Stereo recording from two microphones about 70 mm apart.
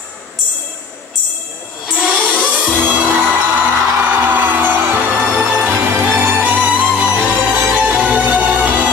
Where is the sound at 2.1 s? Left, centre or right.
Centre.